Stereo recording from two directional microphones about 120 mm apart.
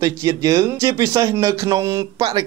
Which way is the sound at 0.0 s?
25° right (ahead or behind).